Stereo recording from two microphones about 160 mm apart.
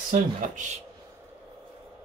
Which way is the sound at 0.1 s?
55° right (ahead or behind).